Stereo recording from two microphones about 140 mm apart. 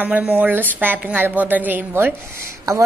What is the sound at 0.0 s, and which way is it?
A woman's voice, 10° right (ahead or behind).